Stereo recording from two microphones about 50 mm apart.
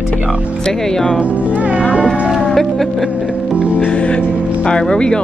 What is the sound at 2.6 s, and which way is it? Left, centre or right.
Music, centre.